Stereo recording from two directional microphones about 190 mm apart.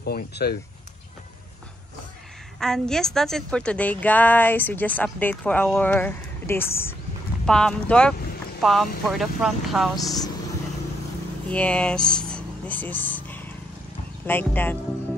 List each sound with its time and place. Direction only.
0.0 s speech: 60° left (ahead or behind)
2.6 s a woman's voice: 5° left (ahead or behind)
9.9 s speech: 20° left (ahead or behind)
11.4 s a woman's voice: 5° left (ahead or behind)